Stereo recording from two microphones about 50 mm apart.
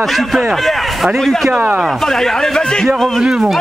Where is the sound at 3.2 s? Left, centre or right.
Centre.